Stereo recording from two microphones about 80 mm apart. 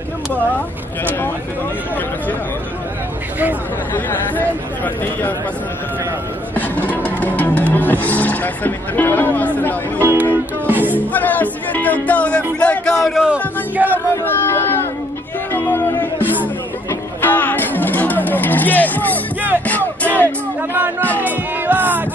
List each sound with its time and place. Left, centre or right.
3.9 s speech: left
6.5 s music: left
9.9 s speech: right
10.7 s music: right
11.1 s speech: left
13.1 s music: centre
13.8 s a sound: centre
14.2 s a sound: left
15.5 s music: left
21.2 s music: right